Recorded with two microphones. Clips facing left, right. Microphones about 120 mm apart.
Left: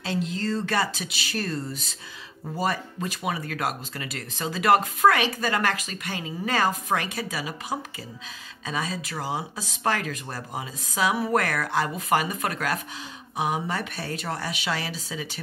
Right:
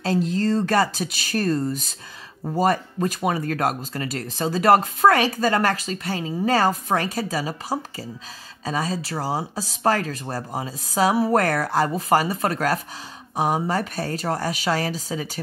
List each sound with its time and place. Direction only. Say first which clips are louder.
0.0 s speech: right 6 dB; 40° right (ahead or behind)